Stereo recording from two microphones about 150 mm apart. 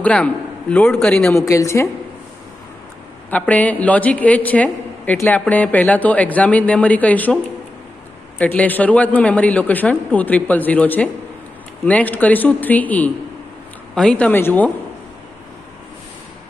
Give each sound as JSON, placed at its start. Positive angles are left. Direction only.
{"t": 0.0, "sound": "a man's voice", "side_deg": 10}
{"t": 1.3, "sound": "a woman's voice", "side_deg": 20}
{"t": 3.3, "sound": "a man's voice", "side_deg": 10}
{"t": 8.4, "sound": "a man's voice", "side_deg": 10}